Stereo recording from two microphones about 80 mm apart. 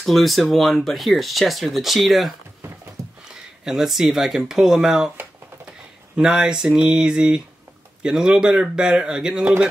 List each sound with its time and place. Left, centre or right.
0.0 s speech: centre
3.0 s a sound: right
3.6 s speech: centre